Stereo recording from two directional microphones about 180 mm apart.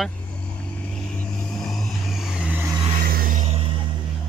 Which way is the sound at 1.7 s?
Centre (ahead or behind).